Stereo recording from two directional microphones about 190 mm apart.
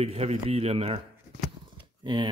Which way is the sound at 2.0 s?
25° right (ahead or behind).